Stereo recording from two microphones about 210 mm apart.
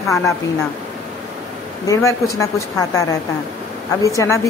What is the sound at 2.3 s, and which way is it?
Speech, 15° left (ahead or behind).